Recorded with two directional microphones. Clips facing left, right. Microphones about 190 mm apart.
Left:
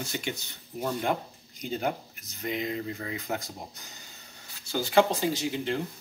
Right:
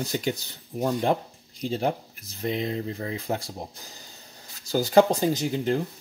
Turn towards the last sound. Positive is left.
turn(degrees=-45)  # may be behind; listen again after turning